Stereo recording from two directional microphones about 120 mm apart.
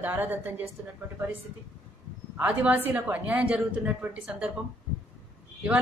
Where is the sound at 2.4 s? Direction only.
10° right (ahead or behind).